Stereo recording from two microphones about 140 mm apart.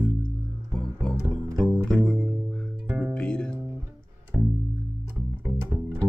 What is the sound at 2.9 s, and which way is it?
Music, 5° right (ahead or behind).